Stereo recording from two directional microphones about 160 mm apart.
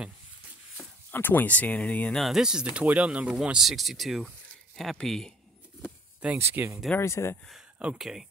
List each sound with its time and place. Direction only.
0.7 s speech: 15° left (ahead or behind)
6.2 s speech: 10° right (ahead or behind)
7.0 s speech: 15° left (ahead or behind)
7.4 s speech: 5° right (ahead or behind)